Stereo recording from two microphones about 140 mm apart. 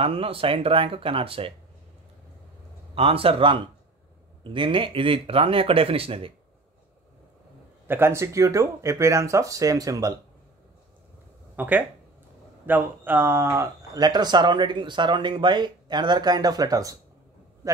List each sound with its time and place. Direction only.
0.0 s speech: 40° right (ahead or behind)
2.9 s speech: 40° right (ahead or behind)
7.9 s speech: 20° right (ahead or behind)
11.5 s speech: 10° right (ahead or behind)